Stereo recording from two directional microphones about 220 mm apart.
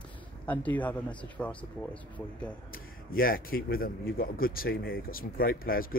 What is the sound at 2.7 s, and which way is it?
A man's voice, 40° left (ahead or behind).